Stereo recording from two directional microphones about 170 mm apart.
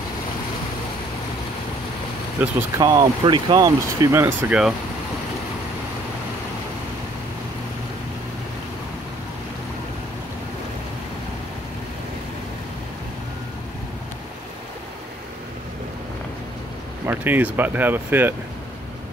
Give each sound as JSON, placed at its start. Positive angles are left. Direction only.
{"t": 2.4, "sound": "speech", "side_deg": -10}
{"t": 2.8, "sound": "speech", "side_deg": -25}
{"t": 4.4, "sound": "speech", "side_deg": -5}
{"t": 17.0, "sound": "speech", "side_deg": -10}